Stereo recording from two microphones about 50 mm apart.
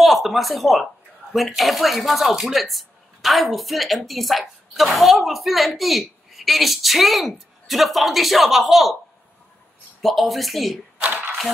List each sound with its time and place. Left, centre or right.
0.0 s speech: centre
10.0 s speech: centre
11.0 s a sound: right